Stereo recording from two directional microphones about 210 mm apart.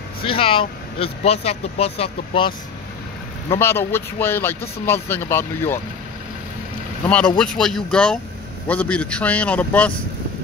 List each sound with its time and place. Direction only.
0.2 s speech: 25° left (ahead or behind)
3.5 s speech: 10° left (ahead or behind)
7.3 s speech: 5° left (ahead or behind)